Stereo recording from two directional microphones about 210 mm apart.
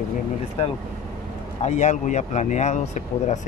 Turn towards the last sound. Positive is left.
turn(degrees=35)  # may be behind; listen again after turning